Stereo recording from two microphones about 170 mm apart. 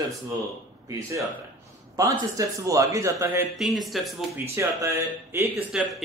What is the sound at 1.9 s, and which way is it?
Speech, 20° right (ahead or behind).